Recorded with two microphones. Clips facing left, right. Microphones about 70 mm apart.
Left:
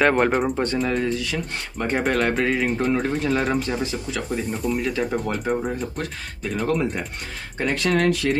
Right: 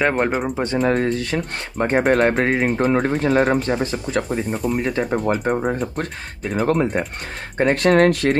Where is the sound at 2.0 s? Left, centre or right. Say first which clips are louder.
Right 5 dB; right.